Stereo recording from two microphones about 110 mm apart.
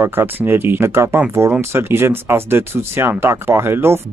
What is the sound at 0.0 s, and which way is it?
Speech, 20° right (ahead or behind).